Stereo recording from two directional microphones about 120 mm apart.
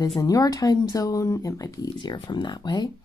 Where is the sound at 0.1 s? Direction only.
30° left (ahead or behind).